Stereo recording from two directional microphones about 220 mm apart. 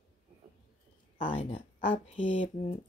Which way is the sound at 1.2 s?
25° left (ahead or behind).